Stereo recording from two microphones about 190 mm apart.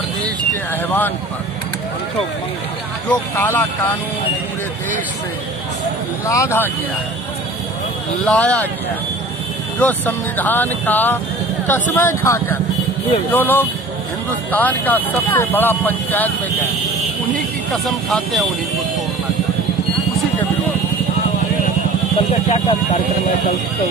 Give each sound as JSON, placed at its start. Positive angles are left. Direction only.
{"t": 0.8, "sound": "speech", "side_deg": 10}
{"t": 3.1, "sound": "speech", "side_deg": 10}
{"t": 6.2, "sound": "speech", "side_deg": 15}
{"t": 8.3, "sound": "speech", "side_deg": 5}
{"t": 9.8, "sound": "speech", "side_deg": 10}
{"t": 17.6, "sound": "speech", "side_deg": 0}
{"t": 22.3, "sound": "speech", "side_deg": 30}